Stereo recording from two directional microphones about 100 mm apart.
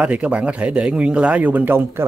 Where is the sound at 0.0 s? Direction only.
10° right (ahead or behind).